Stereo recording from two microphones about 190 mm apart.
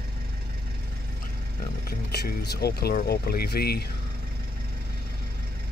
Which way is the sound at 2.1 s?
60° left (ahead or behind).